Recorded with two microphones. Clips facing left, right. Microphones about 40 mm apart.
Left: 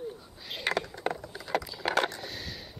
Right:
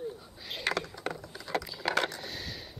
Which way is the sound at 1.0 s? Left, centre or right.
Centre.